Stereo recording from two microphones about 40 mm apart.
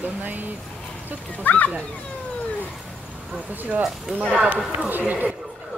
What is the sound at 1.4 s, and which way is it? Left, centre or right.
Speech, left.